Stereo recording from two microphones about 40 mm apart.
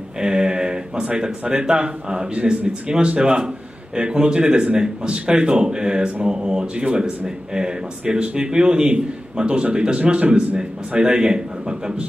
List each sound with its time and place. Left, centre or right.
0.2 s speech: centre